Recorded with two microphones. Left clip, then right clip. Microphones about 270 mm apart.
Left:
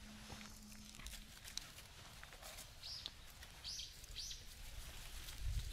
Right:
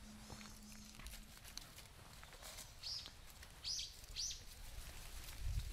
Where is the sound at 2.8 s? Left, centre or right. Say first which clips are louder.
Right 4 dB; centre.